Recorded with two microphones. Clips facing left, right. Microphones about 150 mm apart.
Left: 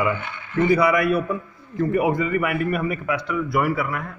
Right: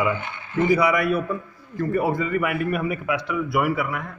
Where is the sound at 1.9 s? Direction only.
15° left (ahead or behind).